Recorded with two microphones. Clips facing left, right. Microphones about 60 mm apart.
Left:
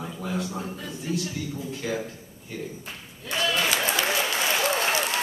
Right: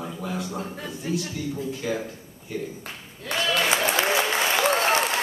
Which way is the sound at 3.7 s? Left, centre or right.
Right.